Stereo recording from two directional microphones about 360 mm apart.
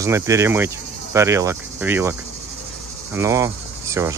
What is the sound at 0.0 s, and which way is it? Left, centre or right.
Speech, centre.